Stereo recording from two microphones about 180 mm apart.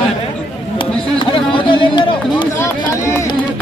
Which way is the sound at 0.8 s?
30° left (ahead or behind).